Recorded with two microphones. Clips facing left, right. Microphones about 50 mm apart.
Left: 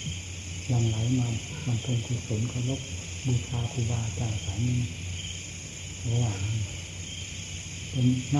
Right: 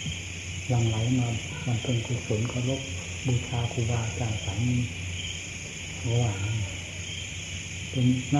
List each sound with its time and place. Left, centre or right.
0.7 s music: right
6.0 s music: right
7.9 s music: right